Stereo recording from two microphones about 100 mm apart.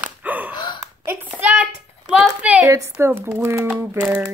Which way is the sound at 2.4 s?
15° right (ahead or behind).